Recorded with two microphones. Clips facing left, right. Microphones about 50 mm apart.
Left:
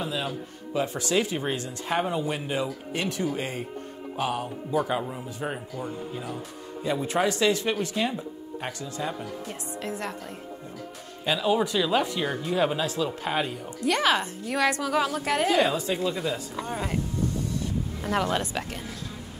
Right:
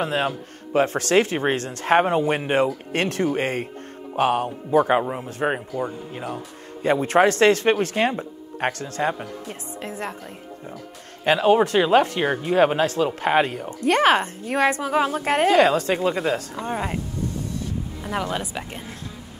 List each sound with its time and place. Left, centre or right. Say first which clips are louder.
0.0 s speech: right 7 dB; right
6.8 s speech: right 8 dB; right
9.2 s a woman's voice: right 2 dB; right
11.2 s speech: right 7 dB; right
16.6 s speech: right 2 dB; right
18.0 s speech: left 1 dB; centre
18.7 s a woman's voice: right 1 dB; right